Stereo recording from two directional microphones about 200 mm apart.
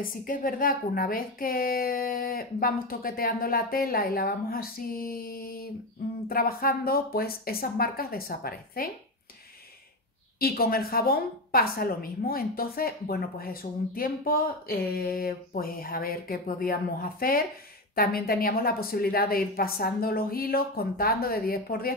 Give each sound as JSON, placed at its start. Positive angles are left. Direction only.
{"t": 0.0, "sound": "a woman's voice", "side_deg": 45}
{"t": 10.4, "sound": "a woman's voice", "side_deg": 50}